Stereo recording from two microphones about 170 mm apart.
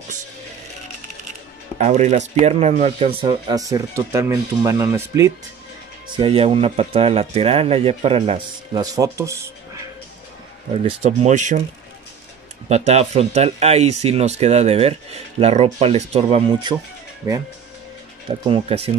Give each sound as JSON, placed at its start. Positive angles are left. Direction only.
{"t": 1.8, "sound": "speech", "side_deg": -40}
{"t": 6.0, "sound": "speech", "side_deg": -30}
{"t": 8.8, "sound": "speech", "side_deg": -20}
{"t": 10.8, "sound": "speech", "side_deg": -40}
{"t": 12.6, "sound": "speech", "side_deg": -40}
{"t": 18.5, "sound": "speech", "side_deg": -35}